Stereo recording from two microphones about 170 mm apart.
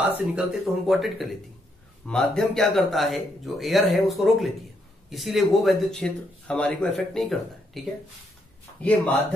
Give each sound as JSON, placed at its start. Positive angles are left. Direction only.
{"t": 0.0, "sound": "a man's voice", "side_deg": -5}